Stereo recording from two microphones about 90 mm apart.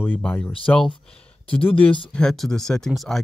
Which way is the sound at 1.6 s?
90° left.